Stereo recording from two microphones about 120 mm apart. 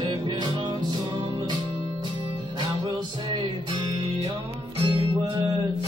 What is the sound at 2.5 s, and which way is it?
Music, 40° right (ahead or behind).